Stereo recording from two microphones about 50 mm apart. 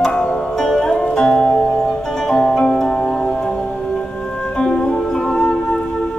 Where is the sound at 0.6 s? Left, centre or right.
Centre.